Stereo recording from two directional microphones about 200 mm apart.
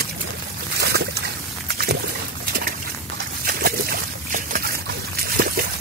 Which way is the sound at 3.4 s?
50° right (ahead or behind).